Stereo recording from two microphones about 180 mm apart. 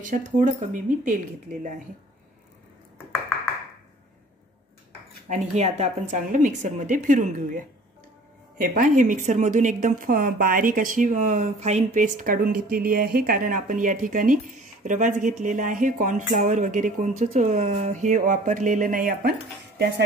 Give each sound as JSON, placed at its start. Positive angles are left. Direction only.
{"t": 0.0, "sound": "a woman's voice", "side_deg": -45}
{"t": 5.3, "sound": "a woman's voice", "side_deg": -40}